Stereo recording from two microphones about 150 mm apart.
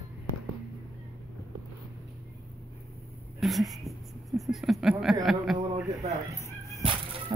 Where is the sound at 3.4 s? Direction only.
Centre (ahead or behind).